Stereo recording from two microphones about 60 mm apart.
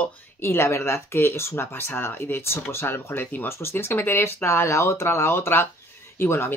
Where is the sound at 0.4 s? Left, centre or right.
Left.